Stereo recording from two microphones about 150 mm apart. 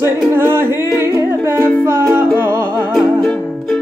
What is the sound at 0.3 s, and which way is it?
Humming, 15° right (ahead or behind).